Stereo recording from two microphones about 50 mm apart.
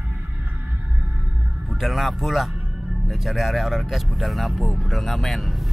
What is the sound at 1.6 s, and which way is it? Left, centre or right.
Speech, centre.